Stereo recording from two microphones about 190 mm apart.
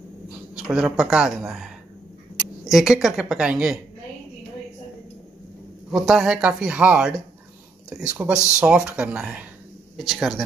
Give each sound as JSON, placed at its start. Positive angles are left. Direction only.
{"t": 0.7, "sound": "speech", "side_deg": -5}
{"t": 5.9, "sound": "speech", "side_deg": 0}